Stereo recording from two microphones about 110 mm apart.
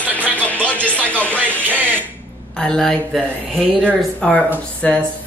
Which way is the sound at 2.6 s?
5° left (ahead or behind).